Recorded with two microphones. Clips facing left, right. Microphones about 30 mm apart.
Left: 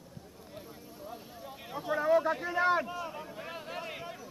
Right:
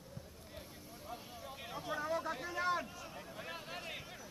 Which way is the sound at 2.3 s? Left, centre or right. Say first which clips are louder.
Left 8 dB; centre.